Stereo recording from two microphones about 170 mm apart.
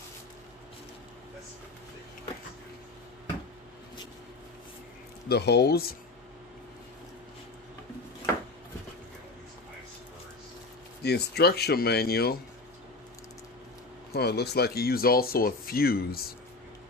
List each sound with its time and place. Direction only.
5.3 s speech: 75° left (ahead or behind)
11.0 s speech: 75° left (ahead or behind)
14.1 s speech: 75° left (ahead or behind)